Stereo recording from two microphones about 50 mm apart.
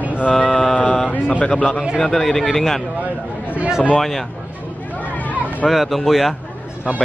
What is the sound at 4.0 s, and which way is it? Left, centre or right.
Speech, centre.